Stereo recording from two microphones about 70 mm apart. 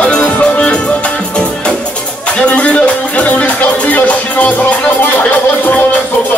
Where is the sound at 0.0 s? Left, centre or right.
Centre.